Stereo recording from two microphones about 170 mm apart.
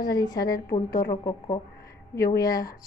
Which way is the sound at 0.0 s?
25° left (ahead or behind).